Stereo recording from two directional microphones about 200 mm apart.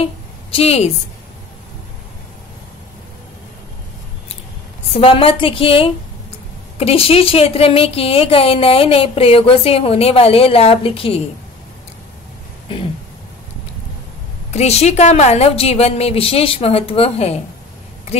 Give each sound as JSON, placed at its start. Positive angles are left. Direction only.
{"t": 0.0, "sound": "a sound", "side_deg": 30}
{"t": 4.9, "sound": "a woman's voice", "side_deg": 30}
{"t": 14.5, "sound": "a woman's voice", "side_deg": 30}